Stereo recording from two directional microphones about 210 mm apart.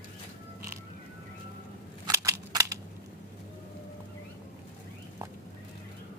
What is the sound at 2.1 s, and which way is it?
Cap gun, 15° right (ahead or behind).